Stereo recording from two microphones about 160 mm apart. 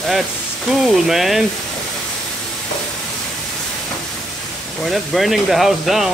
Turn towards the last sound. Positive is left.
turn(degrees=0)  # may be behind; listen again after turning